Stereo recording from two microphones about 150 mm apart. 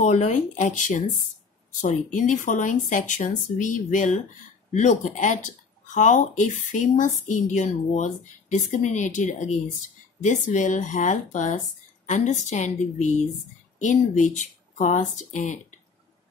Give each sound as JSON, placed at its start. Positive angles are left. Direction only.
{"t": 0.0, "sound": "speech", "side_deg": 55}